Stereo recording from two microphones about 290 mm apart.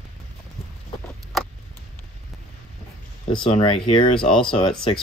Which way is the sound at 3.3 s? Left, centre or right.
Centre.